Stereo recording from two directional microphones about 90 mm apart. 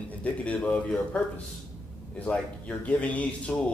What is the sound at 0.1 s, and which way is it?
Speech, 15° left (ahead or behind).